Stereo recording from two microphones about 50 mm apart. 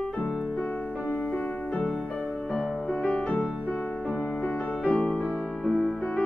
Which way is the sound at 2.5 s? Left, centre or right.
Left.